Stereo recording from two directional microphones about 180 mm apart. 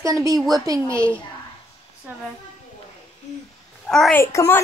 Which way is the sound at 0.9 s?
5° left (ahead or behind).